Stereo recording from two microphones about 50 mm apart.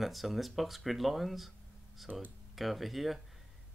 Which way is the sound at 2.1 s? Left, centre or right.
Right.